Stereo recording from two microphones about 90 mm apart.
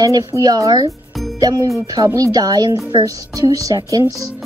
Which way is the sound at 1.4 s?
40° right (ahead or behind).